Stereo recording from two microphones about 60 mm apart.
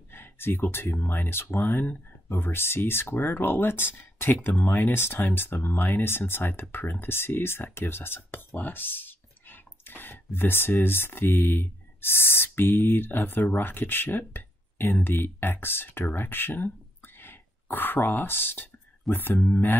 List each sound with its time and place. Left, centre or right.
0.1 s speech: left